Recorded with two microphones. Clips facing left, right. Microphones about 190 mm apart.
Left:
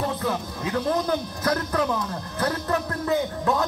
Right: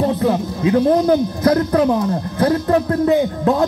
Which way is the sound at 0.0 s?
30° right (ahead or behind).